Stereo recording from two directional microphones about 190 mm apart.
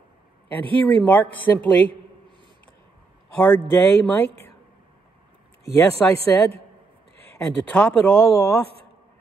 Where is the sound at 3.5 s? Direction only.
10° left (ahead or behind).